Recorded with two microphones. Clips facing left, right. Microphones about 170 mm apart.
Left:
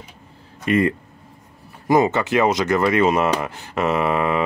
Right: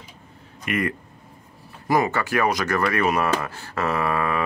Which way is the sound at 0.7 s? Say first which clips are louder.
Left 7 dB; 30° left (ahead or behind).